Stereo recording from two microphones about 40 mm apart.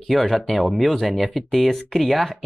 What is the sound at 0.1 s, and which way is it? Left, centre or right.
Speech, centre.